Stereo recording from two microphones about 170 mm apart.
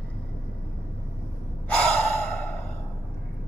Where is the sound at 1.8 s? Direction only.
10° left (ahead or behind).